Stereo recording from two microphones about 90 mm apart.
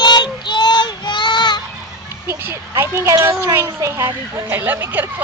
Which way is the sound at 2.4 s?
30° right (ahead or behind).